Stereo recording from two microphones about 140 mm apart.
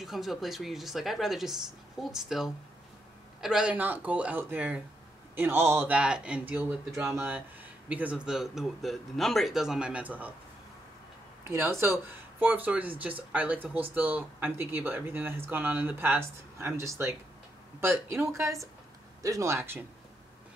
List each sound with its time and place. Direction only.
0.0 s a woman's voice: centre (ahead or behind)
11.4 s speech: 20° right (ahead or behind)